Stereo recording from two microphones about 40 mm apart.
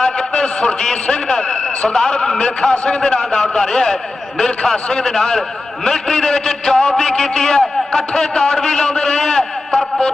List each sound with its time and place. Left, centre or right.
0.0 s a man's voice: left